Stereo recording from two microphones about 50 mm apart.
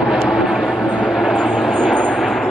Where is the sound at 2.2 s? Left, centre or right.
Centre.